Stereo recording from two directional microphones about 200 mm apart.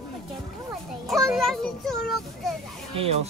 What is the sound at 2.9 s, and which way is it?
Speech, 30° right (ahead or behind).